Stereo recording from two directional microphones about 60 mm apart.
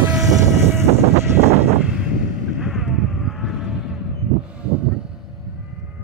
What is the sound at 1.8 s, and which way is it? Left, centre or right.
Vehicle, centre.